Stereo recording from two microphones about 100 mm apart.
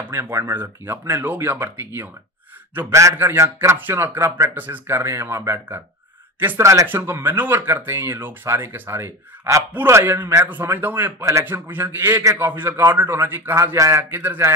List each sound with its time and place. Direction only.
0.1 s speech: 25° right (ahead or behind)
2.9 s a man's voice: 30° right (ahead or behind)